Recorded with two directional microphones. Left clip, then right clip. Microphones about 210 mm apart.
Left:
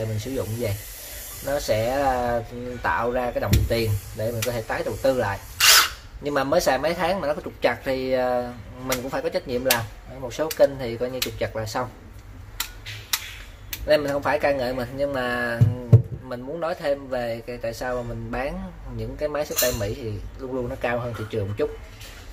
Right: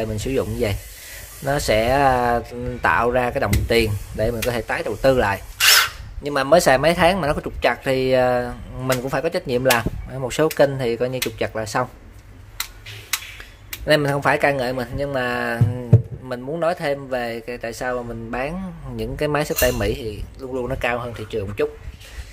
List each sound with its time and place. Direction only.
0.2 s speech: 35° right (ahead or behind)
13.8 s speech: 35° right (ahead or behind)